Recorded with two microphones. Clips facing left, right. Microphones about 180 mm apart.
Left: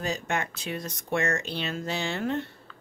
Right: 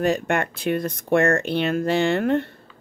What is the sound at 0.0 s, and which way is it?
Speech, 60° right (ahead or behind).